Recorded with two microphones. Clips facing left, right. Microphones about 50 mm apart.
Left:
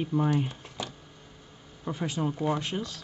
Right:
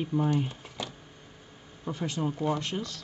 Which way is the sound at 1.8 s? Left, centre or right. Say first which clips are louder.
Left 1 dB; centre.